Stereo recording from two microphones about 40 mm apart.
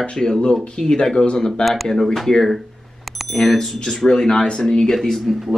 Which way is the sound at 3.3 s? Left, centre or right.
Centre.